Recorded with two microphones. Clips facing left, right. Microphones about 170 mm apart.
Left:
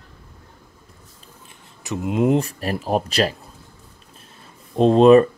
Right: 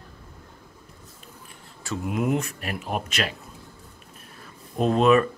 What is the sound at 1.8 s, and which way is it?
Speech, 20° left (ahead or behind).